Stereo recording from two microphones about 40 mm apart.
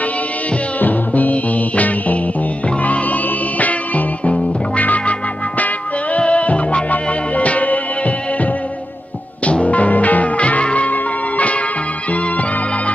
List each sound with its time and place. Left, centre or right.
0.7 s music: left
6.1 s music: left
12.1 s organ: left